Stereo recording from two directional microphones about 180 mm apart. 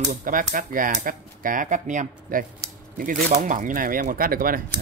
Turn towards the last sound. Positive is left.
turn(degrees=-55)  # may be behind; listen again after turning